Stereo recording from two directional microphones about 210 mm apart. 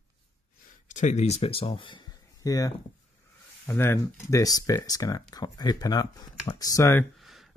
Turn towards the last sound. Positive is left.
turn(degrees=0)  # may be behind; listen again after turning